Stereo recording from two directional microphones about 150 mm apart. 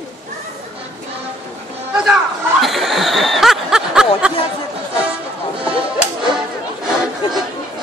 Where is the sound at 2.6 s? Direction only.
Centre (ahead or behind).